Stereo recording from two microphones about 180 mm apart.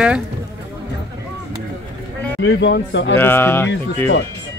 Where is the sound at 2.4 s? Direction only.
80° left.